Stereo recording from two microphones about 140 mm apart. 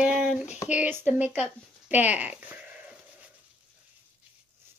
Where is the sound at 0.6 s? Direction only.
10° right (ahead or behind).